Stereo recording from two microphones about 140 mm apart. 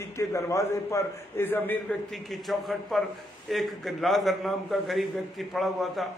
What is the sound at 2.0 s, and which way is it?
A man's voice, centre (ahead or behind).